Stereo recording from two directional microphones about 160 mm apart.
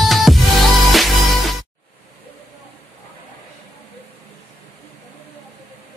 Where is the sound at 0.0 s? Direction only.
Centre (ahead or behind).